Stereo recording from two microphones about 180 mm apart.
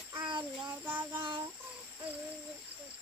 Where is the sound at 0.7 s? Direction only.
10° right (ahead or behind).